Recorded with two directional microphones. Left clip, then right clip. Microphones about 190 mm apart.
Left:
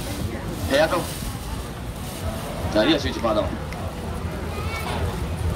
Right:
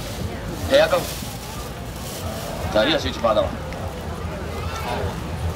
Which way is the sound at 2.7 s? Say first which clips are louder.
Right 1 dB; 20° right (ahead or behind).